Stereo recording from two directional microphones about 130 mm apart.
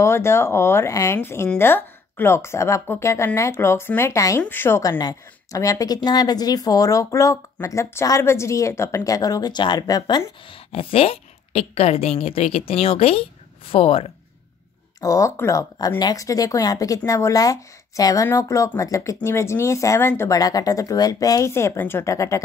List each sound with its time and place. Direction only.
0.0 s speech: 20° left (ahead or behind)
10.7 s a woman's voice: 45° left (ahead or behind)
15.0 s speech: 25° left (ahead or behind)